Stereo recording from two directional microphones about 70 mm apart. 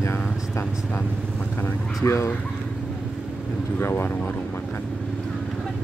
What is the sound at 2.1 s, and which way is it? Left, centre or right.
Speech, left.